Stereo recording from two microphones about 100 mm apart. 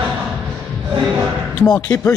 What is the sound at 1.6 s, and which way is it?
Speech, 35° left (ahead or behind).